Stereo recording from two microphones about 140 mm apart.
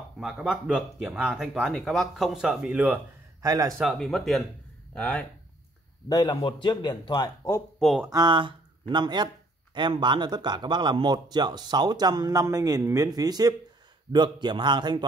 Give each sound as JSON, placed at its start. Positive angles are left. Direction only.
{"t": 0.2, "sound": "speech", "side_deg": -5}
{"t": 3.4, "sound": "speech", "side_deg": -25}
{"t": 3.8, "sound": "speech", "side_deg": 5}
{"t": 6.0, "sound": "speech", "side_deg": 30}
{"t": 8.1, "sound": "speech", "side_deg": -35}